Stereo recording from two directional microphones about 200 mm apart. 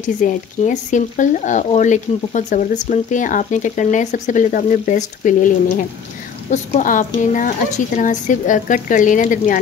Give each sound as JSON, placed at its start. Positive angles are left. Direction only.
{"t": 0.0, "sound": "speech", "side_deg": 40}